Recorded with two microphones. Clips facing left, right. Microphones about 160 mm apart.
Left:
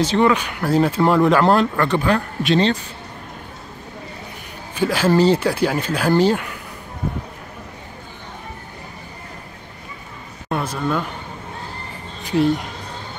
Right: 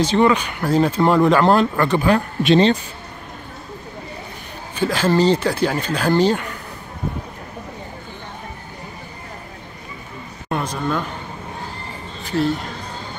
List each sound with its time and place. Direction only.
0.0 s speech: centre (ahead or behind)
2.1 s speech: 20° right (ahead or behind)
4.7 s speech: 10° left (ahead or behind)
10.5 s a sound: 5° left (ahead or behind)